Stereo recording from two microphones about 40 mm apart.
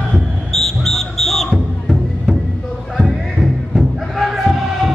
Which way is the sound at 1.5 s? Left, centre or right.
Centre.